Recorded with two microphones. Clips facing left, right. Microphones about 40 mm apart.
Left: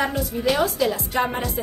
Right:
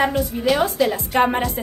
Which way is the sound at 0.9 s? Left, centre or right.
Right.